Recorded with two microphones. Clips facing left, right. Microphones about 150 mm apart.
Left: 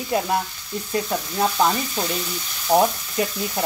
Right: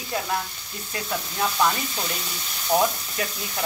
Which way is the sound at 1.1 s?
25° left (ahead or behind).